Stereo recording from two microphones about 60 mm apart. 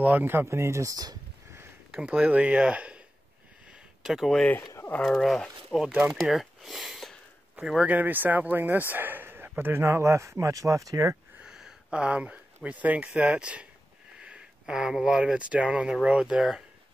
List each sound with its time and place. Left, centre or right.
0.0 s speech: right
0.5 s speech: right
1.9 s speech: centre
4.0 s speech: centre
5.0 s speech: centre
7.8 s speech: right
11.4 s a sound: centre
12.6 s speech: right; by 16.6 s centre